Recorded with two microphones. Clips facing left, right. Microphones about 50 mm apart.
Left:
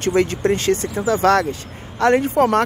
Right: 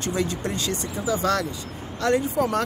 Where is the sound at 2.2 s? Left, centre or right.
Left.